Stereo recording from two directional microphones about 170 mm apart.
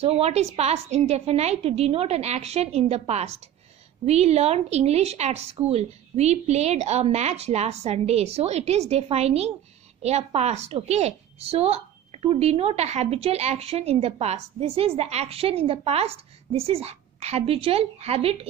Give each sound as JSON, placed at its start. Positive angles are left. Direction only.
{"t": 0.0, "sound": "a woman's voice", "side_deg": -40}